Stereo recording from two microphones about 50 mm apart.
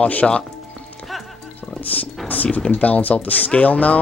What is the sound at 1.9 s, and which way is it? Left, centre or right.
Speech, left.